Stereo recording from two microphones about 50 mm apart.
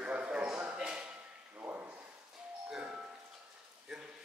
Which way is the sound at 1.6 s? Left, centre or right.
Right.